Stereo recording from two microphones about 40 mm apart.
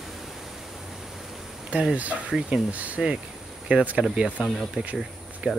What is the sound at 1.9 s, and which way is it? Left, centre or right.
Speech, right.